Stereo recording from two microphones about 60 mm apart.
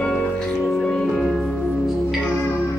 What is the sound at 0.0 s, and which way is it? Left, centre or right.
Music, centre.